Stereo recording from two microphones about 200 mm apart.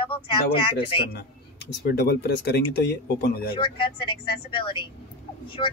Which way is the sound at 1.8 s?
50° left (ahead or behind).